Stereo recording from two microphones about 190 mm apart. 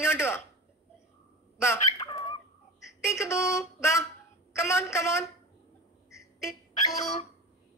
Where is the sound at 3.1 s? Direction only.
15° left (ahead or behind).